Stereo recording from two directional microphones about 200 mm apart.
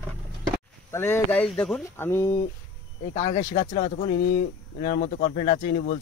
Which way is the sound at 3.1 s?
35° left (ahead or behind).